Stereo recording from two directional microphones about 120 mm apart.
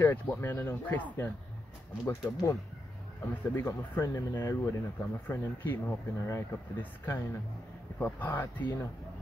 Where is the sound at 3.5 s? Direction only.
20° left (ahead or behind).